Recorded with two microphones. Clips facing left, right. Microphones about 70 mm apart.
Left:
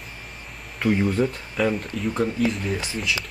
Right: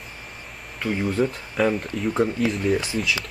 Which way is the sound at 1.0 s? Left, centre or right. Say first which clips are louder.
Left 1 dB; centre.